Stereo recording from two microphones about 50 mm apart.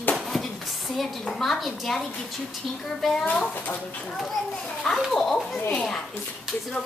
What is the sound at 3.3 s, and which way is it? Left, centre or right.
Speech, left.